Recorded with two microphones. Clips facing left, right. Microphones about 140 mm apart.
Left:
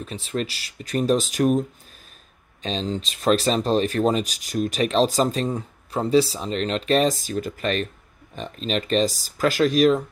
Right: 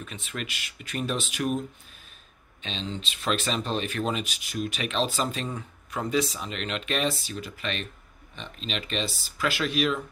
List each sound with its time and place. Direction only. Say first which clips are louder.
0.0 s speech: left 9 dB; 35° left (ahead or behind)
2.6 s speech: left 8 dB; 40° left (ahead or behind)